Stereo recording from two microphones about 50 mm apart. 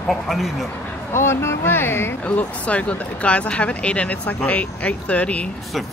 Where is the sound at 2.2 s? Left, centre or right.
Left.